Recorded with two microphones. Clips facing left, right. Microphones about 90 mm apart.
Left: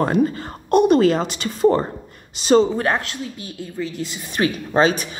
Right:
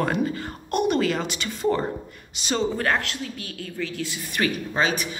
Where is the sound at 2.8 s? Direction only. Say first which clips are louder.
Left 3 dB; 25° left (ahead or behind).